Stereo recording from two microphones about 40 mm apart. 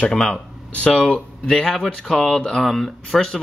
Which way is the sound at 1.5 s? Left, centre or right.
Centre.